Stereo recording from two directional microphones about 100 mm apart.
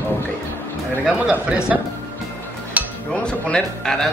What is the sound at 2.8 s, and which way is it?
Dishes, 15° right (ahead or behind).